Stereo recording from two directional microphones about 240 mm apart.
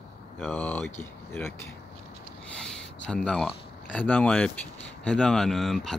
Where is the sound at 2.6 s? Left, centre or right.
Centre.